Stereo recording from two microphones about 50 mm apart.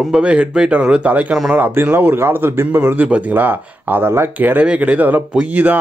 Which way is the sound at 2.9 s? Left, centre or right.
Right.